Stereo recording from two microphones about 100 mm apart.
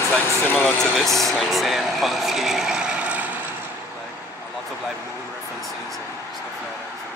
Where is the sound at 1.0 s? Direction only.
Centre (ahead or behind); by 3.5 s 15° right (ahead or behind).